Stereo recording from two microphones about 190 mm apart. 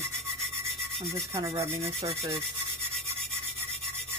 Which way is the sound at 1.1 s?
15° right (ahead or behind).